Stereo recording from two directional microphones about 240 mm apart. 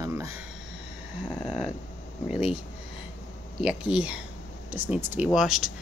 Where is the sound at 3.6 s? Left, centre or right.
Centre.